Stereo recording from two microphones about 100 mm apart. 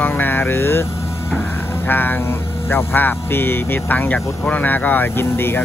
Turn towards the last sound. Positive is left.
turn(degrees=25)  # may be behind; listen again after turning